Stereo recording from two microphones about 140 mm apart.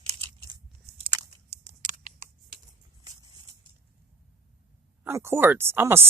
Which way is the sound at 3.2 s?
30° right (ahead or behind).